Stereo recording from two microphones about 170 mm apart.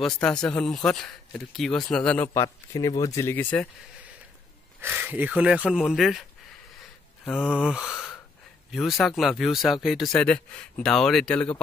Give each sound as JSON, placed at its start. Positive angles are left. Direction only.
{"t": 0.0, "sound": "speech", "side_deg": 5}
{"t": 4.8, "sound": "speech", "side_deg": -10}
{"t": 7.2, "sound": "speech", "side_deg": -5}